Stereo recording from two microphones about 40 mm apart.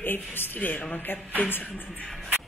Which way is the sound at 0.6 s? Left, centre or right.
Left.